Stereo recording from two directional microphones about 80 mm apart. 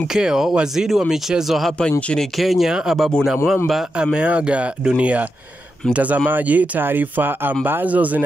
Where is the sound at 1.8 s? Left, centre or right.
Centre.